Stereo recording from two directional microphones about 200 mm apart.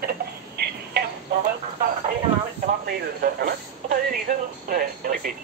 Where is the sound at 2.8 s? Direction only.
50° right (ahead or behind).